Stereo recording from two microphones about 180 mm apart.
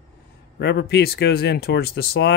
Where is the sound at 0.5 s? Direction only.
65° left (ahead or behind).